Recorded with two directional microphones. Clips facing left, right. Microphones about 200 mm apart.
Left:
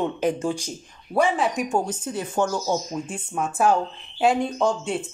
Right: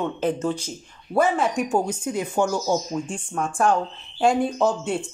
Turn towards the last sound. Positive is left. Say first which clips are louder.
# right 1 dB
turn(degrees=0)  # may be behind; listen again after turning